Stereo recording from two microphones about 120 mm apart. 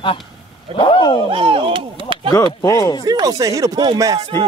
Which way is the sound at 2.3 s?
35° left (ahead or behind).